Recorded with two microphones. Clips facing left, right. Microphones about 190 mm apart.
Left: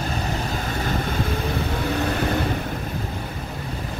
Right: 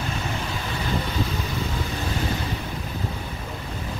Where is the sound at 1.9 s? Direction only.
60° left (ahead or behind).